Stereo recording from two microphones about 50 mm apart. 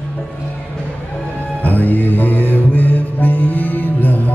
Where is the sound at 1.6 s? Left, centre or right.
Left.